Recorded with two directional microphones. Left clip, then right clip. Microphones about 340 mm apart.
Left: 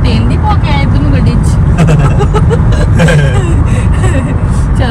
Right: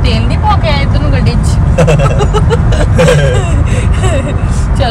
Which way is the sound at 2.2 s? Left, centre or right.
Centre.